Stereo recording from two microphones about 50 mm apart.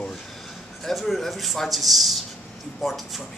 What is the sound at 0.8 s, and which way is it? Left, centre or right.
A man's voice, centre.